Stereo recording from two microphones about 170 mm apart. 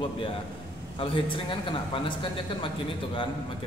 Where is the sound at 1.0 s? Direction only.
30° left (ahead or behind).